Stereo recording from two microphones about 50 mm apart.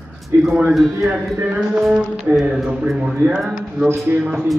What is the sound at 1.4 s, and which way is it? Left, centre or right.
Speech, right.